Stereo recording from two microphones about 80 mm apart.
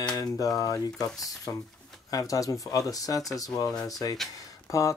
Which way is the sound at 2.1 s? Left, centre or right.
Left.